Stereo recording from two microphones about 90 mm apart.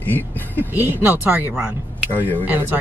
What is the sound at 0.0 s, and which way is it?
Speech, 20° left (ahead or behind).